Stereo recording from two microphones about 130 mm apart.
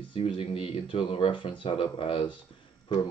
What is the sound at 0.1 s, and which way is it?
Speech, 45° left (ahead or behind).